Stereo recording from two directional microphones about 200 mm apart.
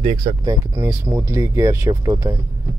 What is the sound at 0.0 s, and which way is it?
Speech, 30° right (ahead or behind).